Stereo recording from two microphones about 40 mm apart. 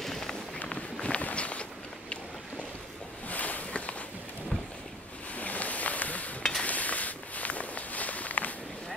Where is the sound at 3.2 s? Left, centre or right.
Left.